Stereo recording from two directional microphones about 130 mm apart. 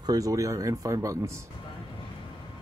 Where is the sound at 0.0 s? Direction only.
30° right (ahead or behind).